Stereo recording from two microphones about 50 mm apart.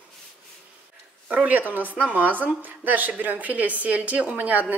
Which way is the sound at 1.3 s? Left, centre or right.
Right.